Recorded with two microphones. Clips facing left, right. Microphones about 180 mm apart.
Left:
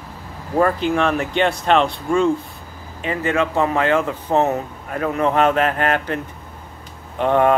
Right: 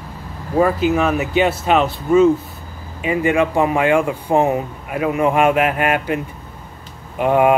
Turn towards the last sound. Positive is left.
turn(degrees=-10)  # may be behind; listen again after turning